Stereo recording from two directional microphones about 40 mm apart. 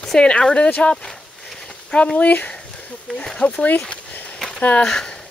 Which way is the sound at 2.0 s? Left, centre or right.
Left.